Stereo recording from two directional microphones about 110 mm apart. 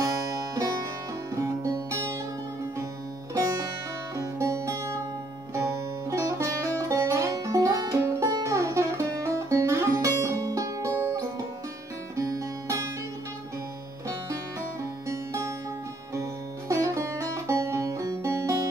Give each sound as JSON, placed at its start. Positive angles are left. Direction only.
{"t": 1.4, "sound": "music", "side_deg": -30}
{"t": 3.3, "sound": "music", "side_deg": -30}
{"t": 6.0, "sound": "music", "side_deg": -25}
{"t": 15.0, "sound": "music", "side_deg": -25}